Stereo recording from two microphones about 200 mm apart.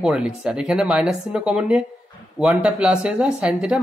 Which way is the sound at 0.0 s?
5° right (ahead or behind).